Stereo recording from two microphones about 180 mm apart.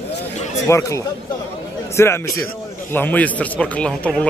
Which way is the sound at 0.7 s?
15° left (ahead or behind).